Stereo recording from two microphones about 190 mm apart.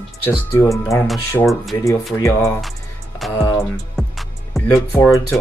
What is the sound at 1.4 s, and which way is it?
Speech, centre (ahead or behind).